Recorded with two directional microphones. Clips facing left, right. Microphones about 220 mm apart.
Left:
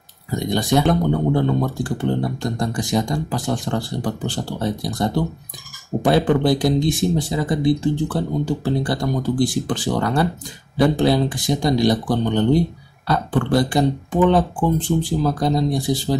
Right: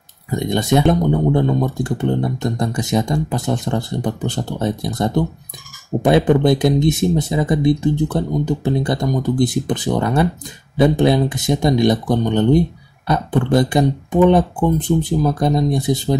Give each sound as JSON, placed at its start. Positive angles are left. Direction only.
{"t": 0.4, "sound": "speech", "side_deg": -20}